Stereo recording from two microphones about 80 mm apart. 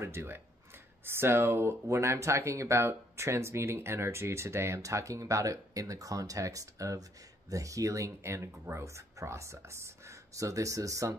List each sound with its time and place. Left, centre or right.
0.0 s speech: right